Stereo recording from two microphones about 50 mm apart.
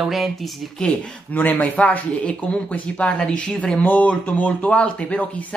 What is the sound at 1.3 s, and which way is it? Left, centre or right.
Speech, left.